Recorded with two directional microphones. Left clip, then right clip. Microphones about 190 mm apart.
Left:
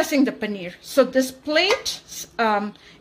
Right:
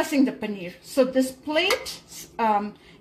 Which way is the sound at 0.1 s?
35° left (ahead or behind).